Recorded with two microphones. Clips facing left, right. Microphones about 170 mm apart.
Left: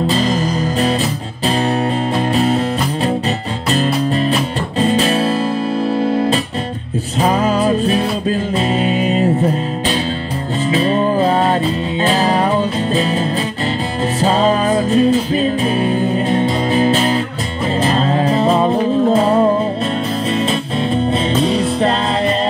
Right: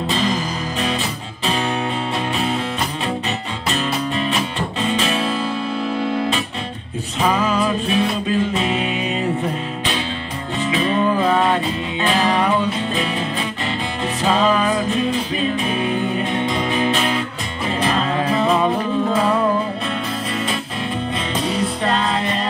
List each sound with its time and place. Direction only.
0.0 s music: 40° left (ahead or behind)
3.7 s music: 40° left (ahead or behind)
10.6 s music: 40° left (ahead or behind)
14.2 s music: 35° left (ahead or behind)